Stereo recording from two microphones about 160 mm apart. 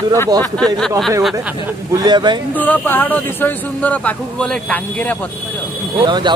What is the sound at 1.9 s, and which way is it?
Speech, 25° right (ahead or behind).